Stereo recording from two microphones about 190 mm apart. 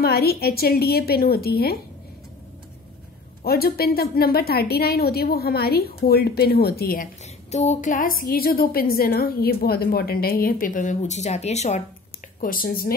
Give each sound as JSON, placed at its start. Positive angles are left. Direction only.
{"t": 0.0, "sound": "a woman's voice", "side_deg": 55}
{"t": 3.4, "sound": "a woman's voice", "side_deg": 55}
{"t": 7.5, "sound": "a woman's voice", "side_deg": 35}
{"t": 12.4, "sound": "a woman's voice", "side_deg": 50}